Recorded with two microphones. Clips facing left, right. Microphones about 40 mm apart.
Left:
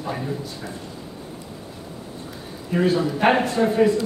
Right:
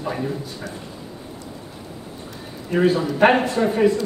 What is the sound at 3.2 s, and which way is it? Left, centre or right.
Speech, centre.